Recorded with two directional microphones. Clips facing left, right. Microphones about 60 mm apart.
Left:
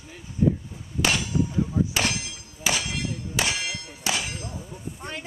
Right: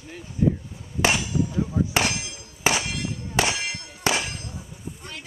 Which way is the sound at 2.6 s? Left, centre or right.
Right.